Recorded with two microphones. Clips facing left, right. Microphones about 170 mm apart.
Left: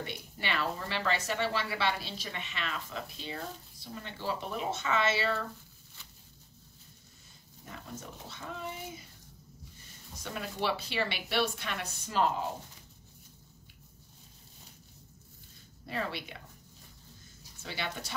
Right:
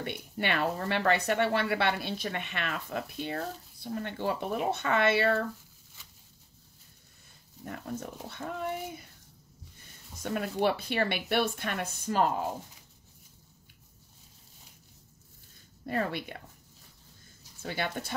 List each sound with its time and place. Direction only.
0.0 s speech: 55° right (ahead or behind)
7.6 s speech: 55° right (ahead or behind)
10.2 s speech: 50° right (ahead or behind)
15.8 s speech: 50° right (ahead or behind)
17.6 s speech: 50° right (ahead or behind)